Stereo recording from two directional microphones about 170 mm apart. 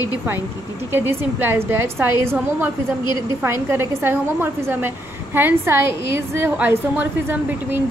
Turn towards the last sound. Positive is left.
turn(degrees=-10)  # may be behind; listen again after turning